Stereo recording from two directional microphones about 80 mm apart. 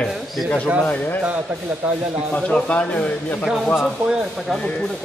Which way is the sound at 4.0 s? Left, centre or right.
Centre.